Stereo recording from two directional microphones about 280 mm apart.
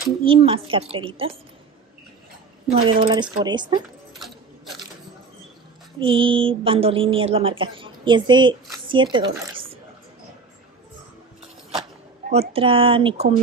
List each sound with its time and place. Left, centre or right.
0.2 s a woman's voice: centre
2.7 s speech: centre
4.1 s a sound: centre
5.9 s a woman's voice: centre
12.3 s a woman's voice: right